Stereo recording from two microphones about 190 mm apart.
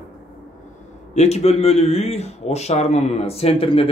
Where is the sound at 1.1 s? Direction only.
35° left (ahead or behind).